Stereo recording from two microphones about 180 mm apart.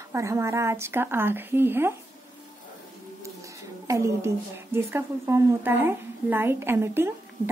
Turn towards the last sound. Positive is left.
turn(degrees=-15)  # may be behind; listen again after turning